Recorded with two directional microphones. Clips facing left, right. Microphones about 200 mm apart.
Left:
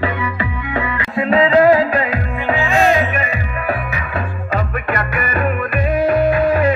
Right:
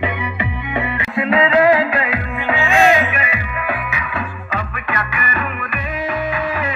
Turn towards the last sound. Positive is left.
turn(degrees=45)  # may be behind; listen again after turning